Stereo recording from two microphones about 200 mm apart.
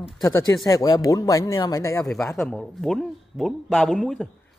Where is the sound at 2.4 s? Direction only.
5° left (ahead or behind).